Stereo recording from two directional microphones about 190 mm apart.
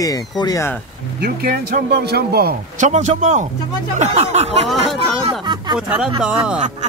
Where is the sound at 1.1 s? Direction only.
55° right (ahead or behind).